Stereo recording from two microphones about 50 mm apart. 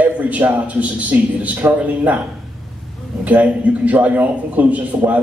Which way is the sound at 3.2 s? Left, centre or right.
Right.